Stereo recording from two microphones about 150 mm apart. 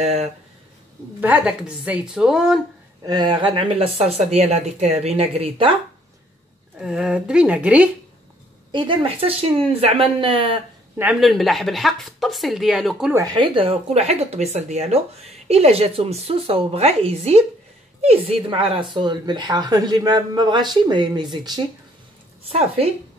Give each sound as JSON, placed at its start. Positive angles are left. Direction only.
{"t": 0.0, "sound": "speech", "side_deg": -45}
{"t": 1.2, "sound": "a woman's voice", "side_deg": -10}
{"t": 3.1, "sound": "a woman's voice", "side_deg": -30}
{"t": 6.8, "sound": "speech", "side_deg": -5}
{"t": 8.7, "sound": "a woman's voice", "side_deg": -35}
{"t": 11.1, "sound": "a woman's voice", "side_deg": 0}
{"t": 13.1, "sound": "speech", "side_deg": -25}
{"t": 13.6, "sound": "speech", "side_deg": -40}
{"t": 22.4, "sound": "a woman's voice", "side_deg": -40}